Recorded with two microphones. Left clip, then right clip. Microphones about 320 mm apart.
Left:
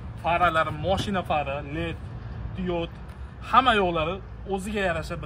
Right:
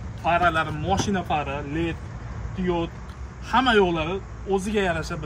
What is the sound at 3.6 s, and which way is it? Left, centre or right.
Speech, centre.